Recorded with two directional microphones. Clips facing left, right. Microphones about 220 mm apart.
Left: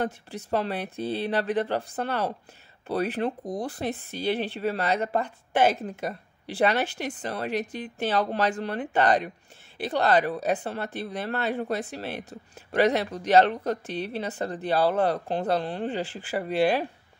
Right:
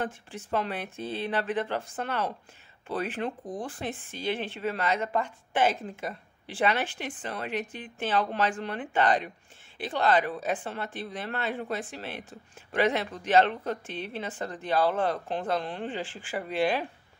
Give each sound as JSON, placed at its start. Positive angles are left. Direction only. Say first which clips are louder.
{"t": 0.0, "sound": "speech", "louder": "left 4 dB", "side_deg": 35}